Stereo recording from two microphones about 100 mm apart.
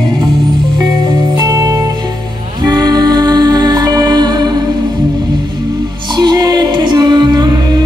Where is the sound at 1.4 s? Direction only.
35° right (ahead or behind).